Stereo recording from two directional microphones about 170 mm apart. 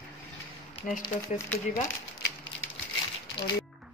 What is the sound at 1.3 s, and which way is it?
Speech, 15° left (ahead or behind).